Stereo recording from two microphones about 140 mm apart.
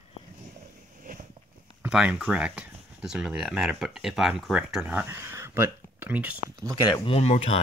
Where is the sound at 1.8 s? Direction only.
5° right (ahead or behind).